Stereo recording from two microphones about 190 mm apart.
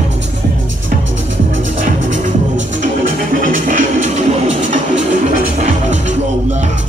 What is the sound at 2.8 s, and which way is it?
Music, 45° right (ahead or behind).